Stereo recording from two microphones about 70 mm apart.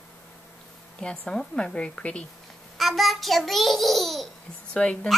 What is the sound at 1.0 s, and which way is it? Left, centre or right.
A woman's voice, centre.